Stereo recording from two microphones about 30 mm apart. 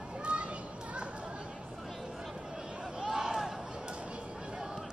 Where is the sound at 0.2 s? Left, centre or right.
Right.